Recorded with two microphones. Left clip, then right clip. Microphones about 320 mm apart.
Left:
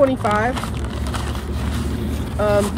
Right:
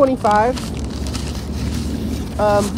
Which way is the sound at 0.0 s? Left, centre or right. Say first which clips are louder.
Right 3 dB; centre.